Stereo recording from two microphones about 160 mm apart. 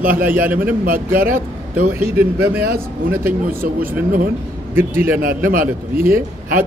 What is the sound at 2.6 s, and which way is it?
A man's voice, 65° right (ahead or behind).